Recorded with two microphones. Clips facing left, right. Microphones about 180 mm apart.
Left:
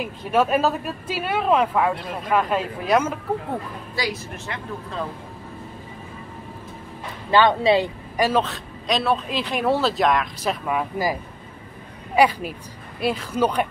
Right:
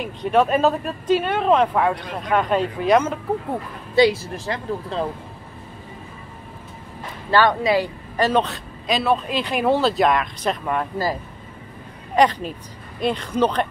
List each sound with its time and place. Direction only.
0.0 s speech: 5° left (ahead or behind)
3.9 s speech: 25° right (ahead or behind)
7.2 s speech: 20° left (ahead or behind)
8.2 s speech: 5° left (ahead or behind)
12.2 s speech: 10° left (ahead or behind)